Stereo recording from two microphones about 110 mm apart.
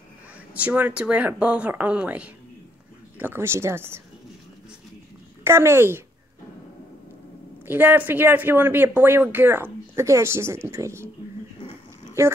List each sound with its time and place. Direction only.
0.5 s speech: 15° right (ahead or behind)
5.4 s speech: 25° right (ahead or behind)
7.6 s speech: 15° right (ahead or behind)
12.2 s speech: 25° right (ahead or behind)